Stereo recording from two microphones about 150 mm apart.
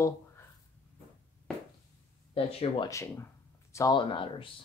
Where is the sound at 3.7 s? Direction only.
30° left (ahead or behind).